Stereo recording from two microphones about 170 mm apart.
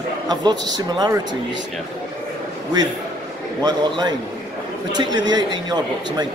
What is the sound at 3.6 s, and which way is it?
Speech, 25° right (ahead or behind).